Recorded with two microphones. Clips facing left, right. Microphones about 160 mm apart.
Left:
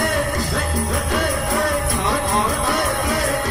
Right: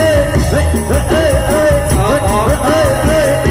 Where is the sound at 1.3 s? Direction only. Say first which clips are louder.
Right 11 dB; 80° right.